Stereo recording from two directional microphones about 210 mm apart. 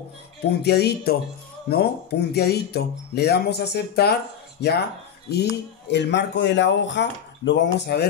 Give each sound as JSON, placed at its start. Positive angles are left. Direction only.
{"t": 0.4, "sound": "speech", "side_deg": 50}